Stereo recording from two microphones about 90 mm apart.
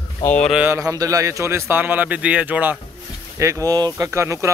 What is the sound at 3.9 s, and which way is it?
Speech, 30° right (ahead or behind).